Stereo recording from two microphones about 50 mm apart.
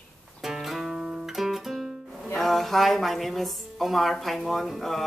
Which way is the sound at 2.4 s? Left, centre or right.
Centre.